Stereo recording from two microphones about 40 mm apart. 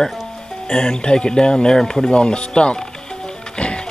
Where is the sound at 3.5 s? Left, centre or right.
Left.